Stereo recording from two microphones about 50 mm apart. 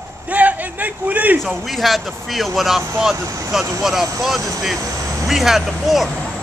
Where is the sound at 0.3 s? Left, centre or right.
Right.